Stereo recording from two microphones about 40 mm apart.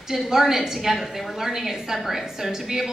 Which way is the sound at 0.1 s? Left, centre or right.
Centre.